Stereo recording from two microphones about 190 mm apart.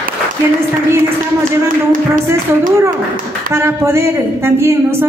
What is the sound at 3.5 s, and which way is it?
Speech, 15° right (ahead or behind).